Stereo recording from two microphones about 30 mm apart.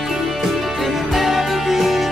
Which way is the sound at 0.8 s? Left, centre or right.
Centre.